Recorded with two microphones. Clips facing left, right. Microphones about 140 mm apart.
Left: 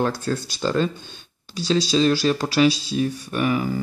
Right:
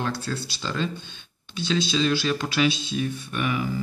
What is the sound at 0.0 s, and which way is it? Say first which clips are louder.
Speech: left 6 dB; 45° left (ahead or behind).